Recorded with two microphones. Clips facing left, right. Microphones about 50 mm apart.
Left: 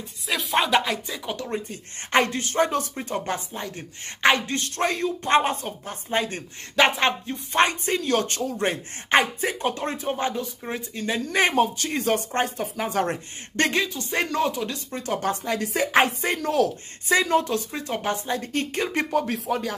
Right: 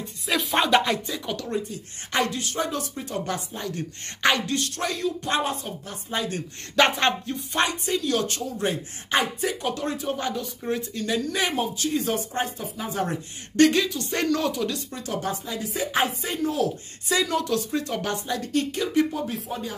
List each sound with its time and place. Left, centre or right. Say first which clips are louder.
0.3 s a sound: right 1 dB; centre
1.1 s speech: right 1 dB; centre
1.7 s speech: left 6 dB; left
6.7 s speech: left 1 dB; centre
7.3 s speech: left 4 dB; left
11.2 s speech: left 5 dB; left
13.6 s speech: right 4 dB; left
14.9 s speech: left 4 dB; left
15.2 s speech: left 4 dB; left
17.1 s speech: left 3 dB; left
18.9 s speech: right 1 dB; left